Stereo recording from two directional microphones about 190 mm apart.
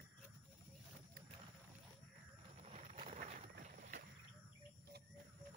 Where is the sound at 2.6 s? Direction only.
35° right (ahead or behind).